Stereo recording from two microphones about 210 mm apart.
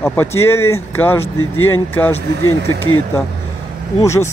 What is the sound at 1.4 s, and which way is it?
Speech, 75° left (ahead or behind).